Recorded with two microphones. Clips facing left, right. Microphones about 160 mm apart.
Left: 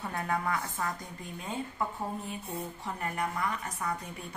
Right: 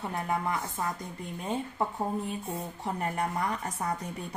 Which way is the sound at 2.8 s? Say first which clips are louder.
Right 4 dB; 35° right (ahead or behind).